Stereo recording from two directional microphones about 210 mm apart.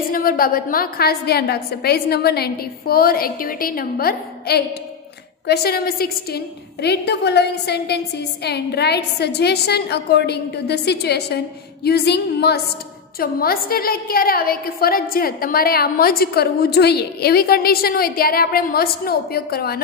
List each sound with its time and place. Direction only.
0.1 s a woman's voice: 45° left (ahead or behind)